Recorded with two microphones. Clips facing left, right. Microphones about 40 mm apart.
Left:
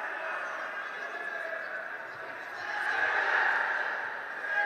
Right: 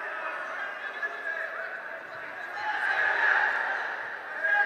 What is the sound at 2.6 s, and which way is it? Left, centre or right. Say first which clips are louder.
Fowl: right 3 dB; right.